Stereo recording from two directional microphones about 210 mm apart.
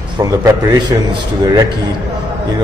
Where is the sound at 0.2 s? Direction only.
20° right (ahead or behind).